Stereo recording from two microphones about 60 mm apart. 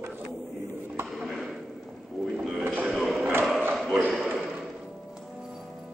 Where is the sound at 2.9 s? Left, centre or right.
Centre.